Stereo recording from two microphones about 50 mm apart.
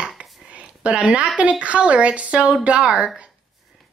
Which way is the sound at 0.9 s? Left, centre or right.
Centre.